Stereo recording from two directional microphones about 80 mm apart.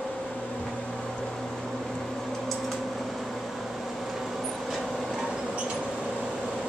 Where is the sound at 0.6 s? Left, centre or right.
Centre.